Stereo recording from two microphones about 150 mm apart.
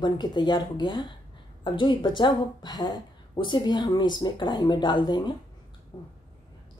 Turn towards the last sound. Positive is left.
turn(degrees=25)  # may be behind; listen again after turning